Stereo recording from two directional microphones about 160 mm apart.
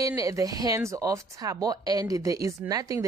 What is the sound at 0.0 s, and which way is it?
Speech, 20° right (ahead or behind).